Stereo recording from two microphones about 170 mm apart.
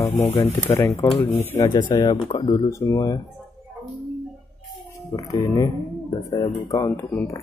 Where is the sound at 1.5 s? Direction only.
20° left (ahead or behind).